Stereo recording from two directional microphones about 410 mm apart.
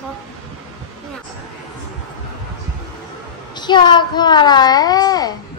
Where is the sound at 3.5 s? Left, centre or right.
Centre.